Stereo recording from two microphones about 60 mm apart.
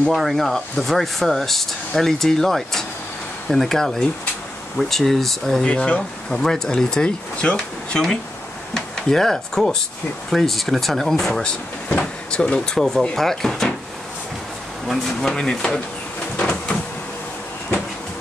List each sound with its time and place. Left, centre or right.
0.0 s speech: centre
5.6 s speech: centre
6.3 s speech: centre
12.0 s speech: centre
14.9 s speech: centre
16.3 s a sound: centre